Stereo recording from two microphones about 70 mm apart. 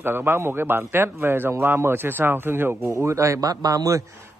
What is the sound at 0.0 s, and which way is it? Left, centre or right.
Speech, right.